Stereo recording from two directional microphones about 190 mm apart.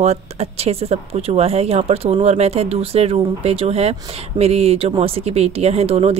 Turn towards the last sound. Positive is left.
turn(degrees=-30)  # may be behind; listen again after turning